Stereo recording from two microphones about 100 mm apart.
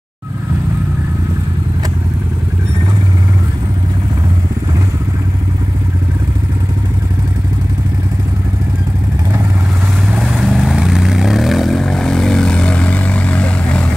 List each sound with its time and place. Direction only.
10.1 s vehicle: 5° right (ahead or behind); by 13.8 s 10° left (ahead or behind)